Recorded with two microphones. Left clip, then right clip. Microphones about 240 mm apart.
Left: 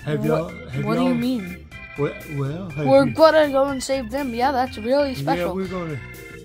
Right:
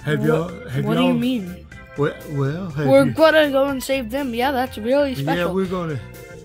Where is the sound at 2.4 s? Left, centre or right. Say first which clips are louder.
Right 4 dB; right.